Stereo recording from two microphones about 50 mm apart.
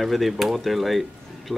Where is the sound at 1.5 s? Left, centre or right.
Right.